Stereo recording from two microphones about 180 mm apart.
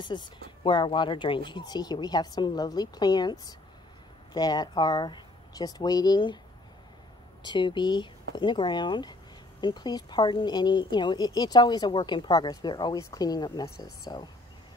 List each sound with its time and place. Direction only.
0.7 s a woman's voice: 25° left (ahead or behind)
7.4 s a woman's voice: 25° left (ahead or behind)